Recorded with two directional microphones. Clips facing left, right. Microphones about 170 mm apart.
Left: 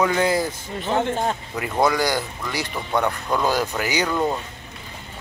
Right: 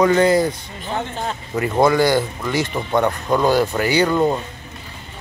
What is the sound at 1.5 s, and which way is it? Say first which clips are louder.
Speech: right 7 dB; centre (ahead or behind).